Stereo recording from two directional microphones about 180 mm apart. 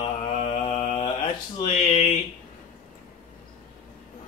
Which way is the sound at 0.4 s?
35° left (ahead or behind).